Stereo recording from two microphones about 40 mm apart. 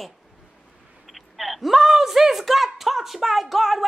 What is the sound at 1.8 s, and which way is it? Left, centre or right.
Speech, centre.